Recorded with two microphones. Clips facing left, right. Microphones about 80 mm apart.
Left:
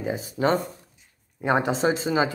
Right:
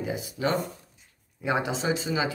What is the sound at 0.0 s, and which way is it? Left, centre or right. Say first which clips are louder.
Speech: left 4 dB; left.